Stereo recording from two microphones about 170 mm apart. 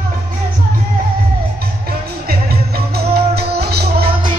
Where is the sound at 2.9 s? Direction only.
70° right (ahead or behind).